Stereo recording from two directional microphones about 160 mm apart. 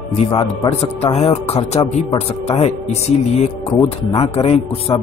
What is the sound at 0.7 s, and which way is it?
Speech, 40° left (ahead or behind).